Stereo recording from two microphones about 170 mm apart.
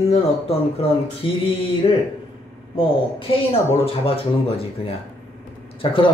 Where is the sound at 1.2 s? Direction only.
30° left (ahead or behind).